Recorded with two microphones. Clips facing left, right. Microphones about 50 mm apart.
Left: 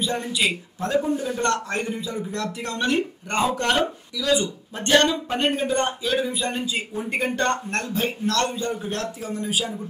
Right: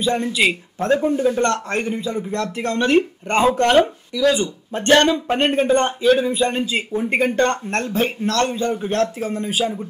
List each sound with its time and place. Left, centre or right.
0.0 s a man's voice: right